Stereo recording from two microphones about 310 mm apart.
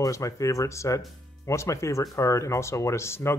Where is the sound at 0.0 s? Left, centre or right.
Centre.